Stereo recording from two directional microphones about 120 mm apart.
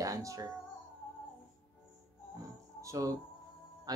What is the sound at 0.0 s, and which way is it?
Music, 30° right (ahead or behind).